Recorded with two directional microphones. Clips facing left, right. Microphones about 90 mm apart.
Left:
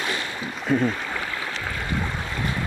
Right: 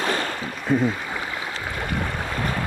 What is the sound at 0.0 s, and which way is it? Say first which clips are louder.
Boat: right 4 dB; 40° right (ahead or behind).